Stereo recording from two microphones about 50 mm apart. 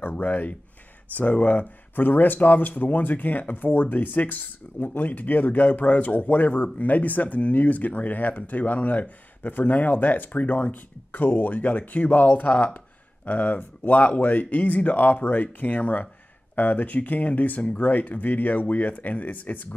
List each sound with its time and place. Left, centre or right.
0.1 s speech: left